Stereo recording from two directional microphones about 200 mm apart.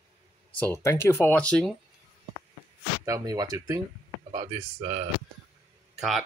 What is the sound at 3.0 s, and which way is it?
Speech, 15° right (ahead or behind).